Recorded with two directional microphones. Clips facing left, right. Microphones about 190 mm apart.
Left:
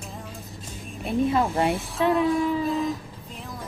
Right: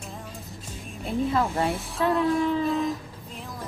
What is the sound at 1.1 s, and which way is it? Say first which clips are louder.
Speech: left 2 dB; 20° left (ahead or behind).